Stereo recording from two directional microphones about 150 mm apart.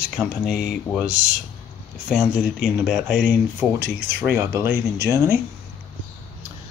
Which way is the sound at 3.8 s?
90° right.